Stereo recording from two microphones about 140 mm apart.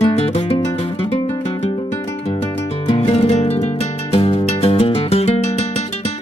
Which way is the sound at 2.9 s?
45° left (ahead or behind).